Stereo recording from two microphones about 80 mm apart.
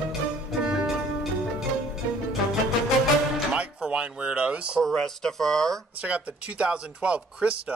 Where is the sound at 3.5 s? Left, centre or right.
Centre.